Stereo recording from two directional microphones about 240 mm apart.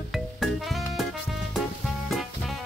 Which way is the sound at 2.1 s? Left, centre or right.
Centre.